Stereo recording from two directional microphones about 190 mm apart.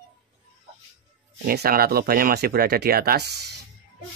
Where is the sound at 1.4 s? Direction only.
50° right (ahead or behind).